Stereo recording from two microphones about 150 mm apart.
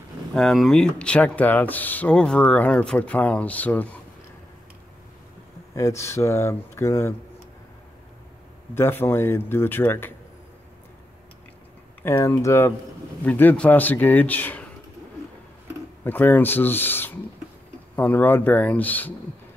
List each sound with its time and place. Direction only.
0.3 s speech: centre (ahead or behind)
5.8 s speech: 20° left (ahead or behind)
8.7 s speech: 15° left (ahead or behind)
12.0 s speech: 15° left (ahead or behind)
16.0 s speech: 15° left (ahead or behind)